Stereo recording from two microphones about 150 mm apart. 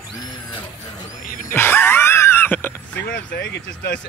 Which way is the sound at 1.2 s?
65° left (ahead or behind).